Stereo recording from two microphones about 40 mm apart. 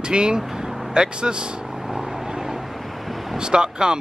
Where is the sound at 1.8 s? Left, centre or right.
Centre.